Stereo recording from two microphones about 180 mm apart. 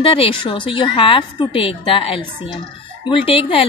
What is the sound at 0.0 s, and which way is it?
A woman's voice, 30° left (ahead or behind).